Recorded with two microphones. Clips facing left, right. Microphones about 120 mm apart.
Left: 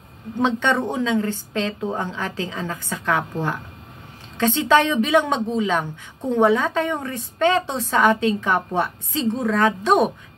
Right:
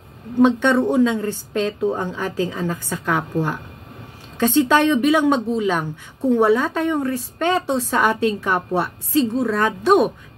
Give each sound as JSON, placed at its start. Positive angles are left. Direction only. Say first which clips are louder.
{"t": 0.4, "sound": "a woman's voice", "louder": "right 5 dB", "side_deg": -10}
{"t": 4.4, "sound": "a woman's voice", "louder": "right 2 dB", "side_deg": -10}